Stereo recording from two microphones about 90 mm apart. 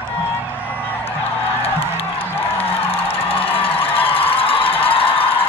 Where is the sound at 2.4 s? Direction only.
90° left.